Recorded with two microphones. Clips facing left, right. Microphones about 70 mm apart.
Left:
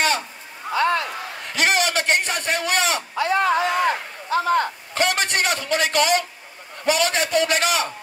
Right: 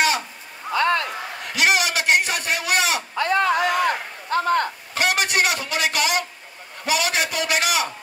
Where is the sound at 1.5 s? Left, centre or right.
Left.